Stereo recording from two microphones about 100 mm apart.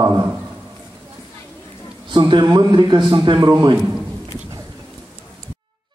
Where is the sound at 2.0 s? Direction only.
50° right (ahead or behind).